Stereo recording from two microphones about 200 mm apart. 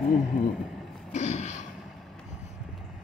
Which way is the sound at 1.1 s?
35° left (ahead or behind).